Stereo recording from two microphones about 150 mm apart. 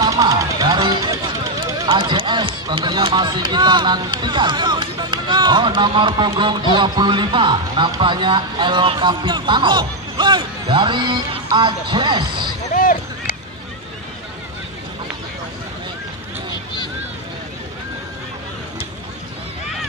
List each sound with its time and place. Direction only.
0.0 s music: 25° right (ahead or behind)
1.6 s speech: 30° right (ahead or behind)
12.7 s a sound: 70° left (ahead or behind)